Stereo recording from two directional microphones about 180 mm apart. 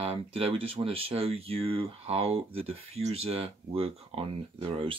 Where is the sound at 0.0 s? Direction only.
30° right (ahead or behind).